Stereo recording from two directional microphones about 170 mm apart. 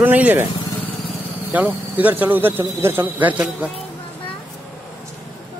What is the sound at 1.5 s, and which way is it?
Speech, 10° right (ahead or behind).